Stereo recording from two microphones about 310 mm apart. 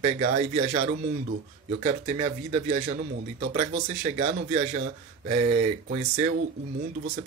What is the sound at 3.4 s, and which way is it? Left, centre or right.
Speech, right.